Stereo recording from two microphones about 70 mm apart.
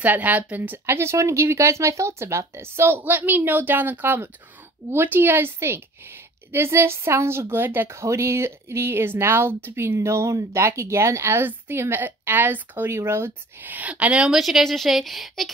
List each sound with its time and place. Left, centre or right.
0.0 s speech: right
0.8 s speech: right
7.9 s speech: right; by 15.5 s centre